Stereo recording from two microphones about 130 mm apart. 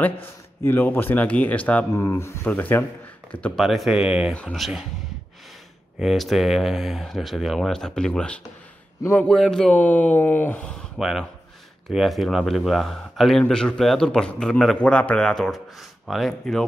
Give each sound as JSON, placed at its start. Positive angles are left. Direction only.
{"t": 0.0, "sound": "a man's voice", "side_deg": 15}
{"t": 5.9, "sound": "a man's voice", "side_deg": 0}
{"t": 11.0, "sound": "a man's voice", "side_deg": -5}